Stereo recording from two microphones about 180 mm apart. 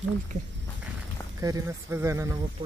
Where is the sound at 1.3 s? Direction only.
15° right (ahead or behind).